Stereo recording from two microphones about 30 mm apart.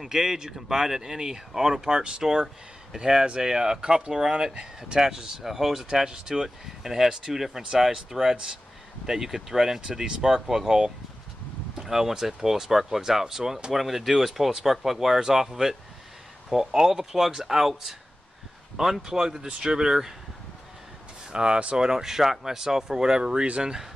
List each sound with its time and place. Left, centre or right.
0.0 s speech: centre
11.7 s speech: centre
13.7 s speech: centre
15.1 s speech: centre
19.0 s speech: centre
21.3 s speech: right